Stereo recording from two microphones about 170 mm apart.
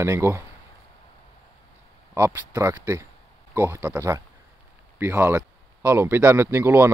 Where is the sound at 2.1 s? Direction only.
15° right (ahead or behind).